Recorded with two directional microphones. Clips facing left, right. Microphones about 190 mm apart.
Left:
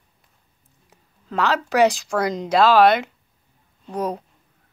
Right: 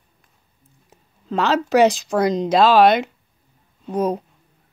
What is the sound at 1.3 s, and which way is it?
Speech, 20° right (ahead or behind).